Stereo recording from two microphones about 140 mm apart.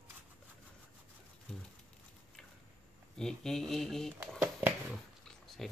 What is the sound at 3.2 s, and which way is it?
Speech, 5° left (ahead or behind).